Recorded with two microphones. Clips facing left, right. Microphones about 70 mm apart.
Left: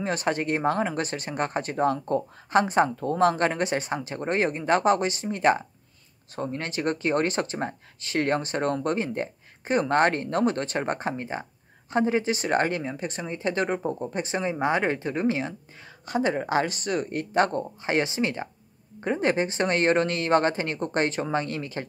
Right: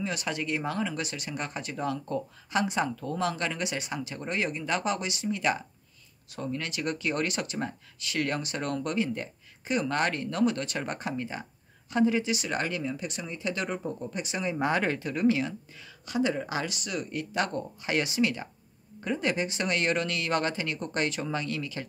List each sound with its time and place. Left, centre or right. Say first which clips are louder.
0.0 s speech: left 6 dB; left